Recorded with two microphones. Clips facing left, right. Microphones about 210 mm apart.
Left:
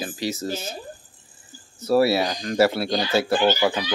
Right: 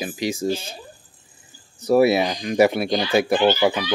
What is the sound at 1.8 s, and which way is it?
Speech, 15° right (ahead or behind).